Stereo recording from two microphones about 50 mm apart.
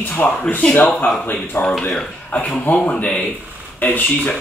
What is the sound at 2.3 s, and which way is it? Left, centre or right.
A man's voice, left.